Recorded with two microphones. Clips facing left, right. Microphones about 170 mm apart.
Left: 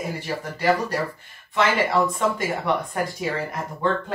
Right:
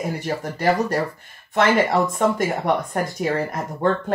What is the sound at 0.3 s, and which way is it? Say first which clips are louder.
Speech: right 2 dB; 45° right (ahead or behind).